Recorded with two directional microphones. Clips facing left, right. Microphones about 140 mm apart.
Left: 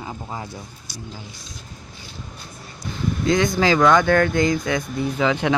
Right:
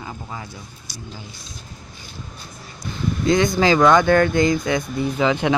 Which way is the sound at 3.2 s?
25° right (ahead or behind).